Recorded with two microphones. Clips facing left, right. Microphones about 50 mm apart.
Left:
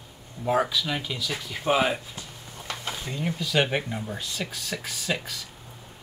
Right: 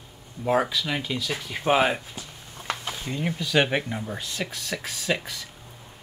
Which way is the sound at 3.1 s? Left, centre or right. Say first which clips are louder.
Right 2 dB; centre.